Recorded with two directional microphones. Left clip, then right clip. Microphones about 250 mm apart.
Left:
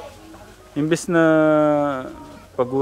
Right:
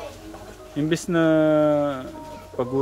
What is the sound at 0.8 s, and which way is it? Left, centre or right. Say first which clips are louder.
Speech: left 4 dB; centre.